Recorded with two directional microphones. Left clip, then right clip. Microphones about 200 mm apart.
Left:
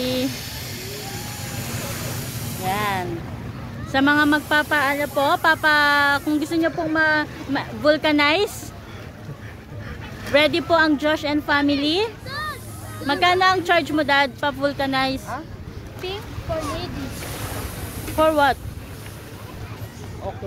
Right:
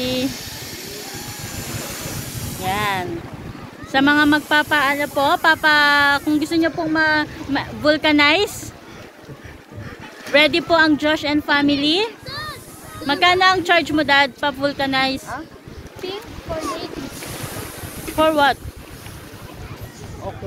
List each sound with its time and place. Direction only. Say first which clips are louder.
0.0 s a sound: right 1 dB; centre (ahead or behind)
2.6 s music: right 2 dB; centre (ahead or behind)
3.9 s a woman's voice: right 2 dB; centre (ahead or behind)
10.3 s a woman's voice: right 2 dB; centre (ahead or behind)
12.3 s a sound: left 1 dB; 45° left (ahead or behind)
13.0 s a woman's voice: right 3 dB; centre (ahead or behind)
18.1 s a woman's voice: right 2 dB; centre (ahead or behind)